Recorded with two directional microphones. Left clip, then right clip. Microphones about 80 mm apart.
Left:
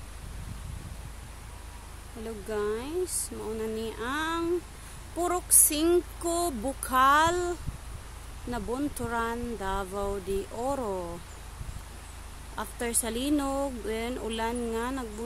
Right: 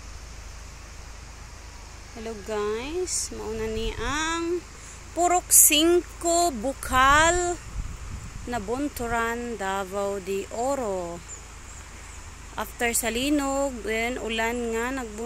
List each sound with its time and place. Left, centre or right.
2.2 s speech: centre
5.1 s speech: centre
5.5 s speech: right
5.9 s speech: centre
12.5 s speech: centre